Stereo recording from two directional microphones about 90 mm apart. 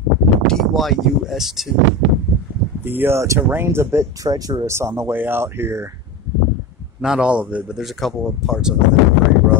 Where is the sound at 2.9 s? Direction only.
25° right (ahead or behind).